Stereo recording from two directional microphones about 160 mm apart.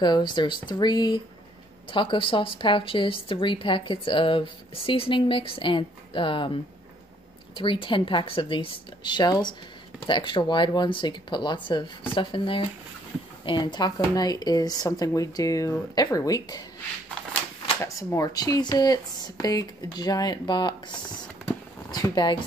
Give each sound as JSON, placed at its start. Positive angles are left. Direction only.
{"t": 0.0, "sound": "a woman's voice", "side_deg": 25}
{"t": 17.8, "sound": "speech", "side_deg": 20}
{"t": 21.9, "sound": "speech", "side_deg": 25}